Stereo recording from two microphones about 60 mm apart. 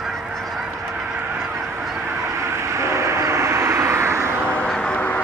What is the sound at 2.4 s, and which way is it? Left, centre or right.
Vehicle, right.